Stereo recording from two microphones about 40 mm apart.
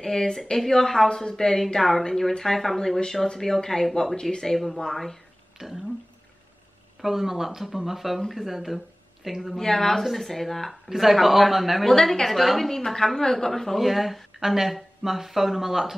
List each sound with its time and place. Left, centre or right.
0.0 s a woman's voice: centre
5.6 s speech: centre
7.0 s speech: centre
9.6 s a woman's voice: centre
11.9 s a woman's voice: centre
12.3 s a woman's voice: centre
13.7 s speech: centre